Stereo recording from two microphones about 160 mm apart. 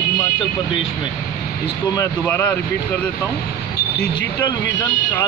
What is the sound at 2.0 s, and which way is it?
Speech, 15° left (ahead or behind).